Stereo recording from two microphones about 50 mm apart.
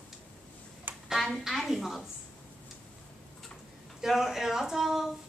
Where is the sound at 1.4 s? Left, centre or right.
Centre.